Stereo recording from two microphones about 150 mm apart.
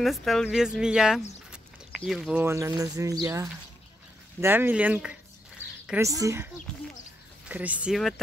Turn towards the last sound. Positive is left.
turn(degrees=-10)  # may be behind; listen again after turning